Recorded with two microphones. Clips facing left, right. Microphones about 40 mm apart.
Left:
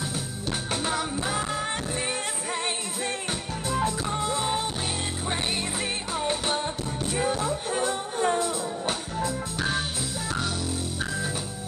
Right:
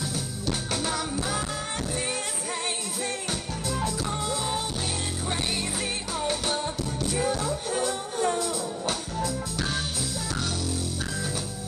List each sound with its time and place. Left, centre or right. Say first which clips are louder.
0.5 s music: left 1 dB; left